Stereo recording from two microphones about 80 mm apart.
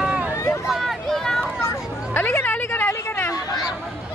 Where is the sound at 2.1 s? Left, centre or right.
Left.